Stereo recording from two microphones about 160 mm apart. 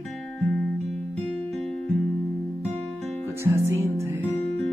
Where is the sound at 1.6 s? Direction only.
Centre (ahead or behind).